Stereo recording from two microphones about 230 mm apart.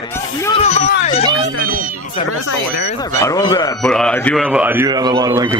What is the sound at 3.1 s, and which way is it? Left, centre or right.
Speech, centre.